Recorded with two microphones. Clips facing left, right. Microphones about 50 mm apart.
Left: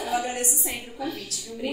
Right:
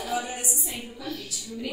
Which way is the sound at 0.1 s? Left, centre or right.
Left.